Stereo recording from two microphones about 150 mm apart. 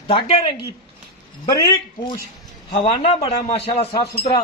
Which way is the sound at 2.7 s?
40° left (ahead or behind).